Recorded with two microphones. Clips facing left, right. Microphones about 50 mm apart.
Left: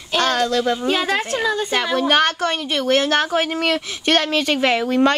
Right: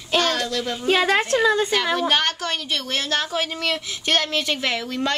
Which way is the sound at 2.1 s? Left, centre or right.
Left.